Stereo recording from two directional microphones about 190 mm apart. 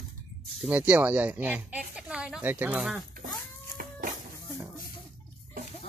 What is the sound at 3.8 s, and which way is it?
Music, 50° right (ahead or behind).